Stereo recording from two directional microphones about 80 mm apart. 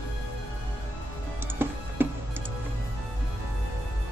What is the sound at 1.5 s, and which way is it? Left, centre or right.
Music, right.